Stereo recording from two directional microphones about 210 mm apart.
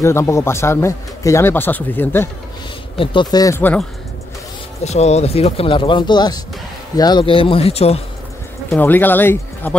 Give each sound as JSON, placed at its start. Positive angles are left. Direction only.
{"t": 0.0, "sound": "speech", "side_deg": 15}
{"t": 3.0, "sound": "speech", "side_deg": 25}
{"t": 4.8, "sound": "speech", "side_deg": 30}
{"t": 8.6, "sound": "speech", "side_deg": 10}